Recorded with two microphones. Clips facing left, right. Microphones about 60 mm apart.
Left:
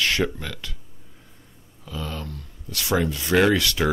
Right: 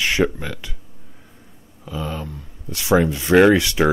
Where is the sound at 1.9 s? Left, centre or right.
Centre.